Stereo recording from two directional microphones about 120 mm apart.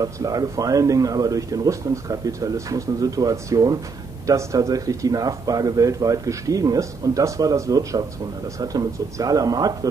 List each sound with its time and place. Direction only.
0.0 s speech: 30° right (ahead or behind)